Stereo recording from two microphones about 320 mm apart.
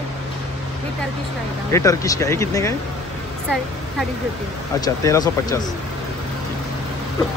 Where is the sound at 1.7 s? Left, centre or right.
Centre.